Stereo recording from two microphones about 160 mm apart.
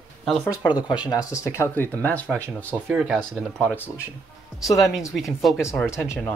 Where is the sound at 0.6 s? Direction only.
30° left (ahead or behind); by 2.4 s 5° left (ahead or behind).